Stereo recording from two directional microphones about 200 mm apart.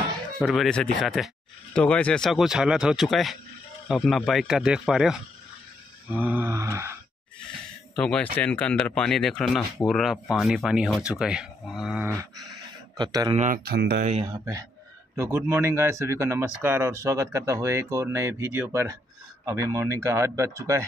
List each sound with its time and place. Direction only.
0.4 s speech: centre (ahead or behind)
6.1 s speech: 10° right (ahead or behind)
7.9 s speech: 5° left (ahead or behind)
12.9 s speech: 20° right (ahead or behind)
13.4 s speech: 45° right (ahead or behind)
14.2 s speech: 20° right (ahead or behind)